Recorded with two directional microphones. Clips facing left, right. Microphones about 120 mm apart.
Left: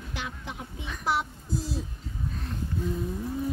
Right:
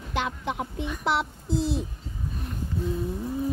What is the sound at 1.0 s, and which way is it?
Child singing, 70° right (ahead or behind).